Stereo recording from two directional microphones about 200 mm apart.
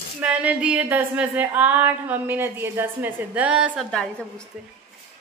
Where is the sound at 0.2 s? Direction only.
5° right (ahead or behind).